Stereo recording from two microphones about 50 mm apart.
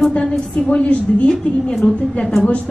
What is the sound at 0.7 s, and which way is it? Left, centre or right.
Speech, left.